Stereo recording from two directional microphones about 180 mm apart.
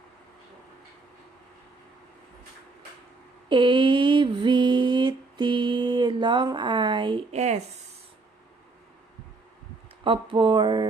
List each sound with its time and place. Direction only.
3.4 s mantra: 25° right (ahead or behind)
10.0 s mantra: 30° right (ahead or behind)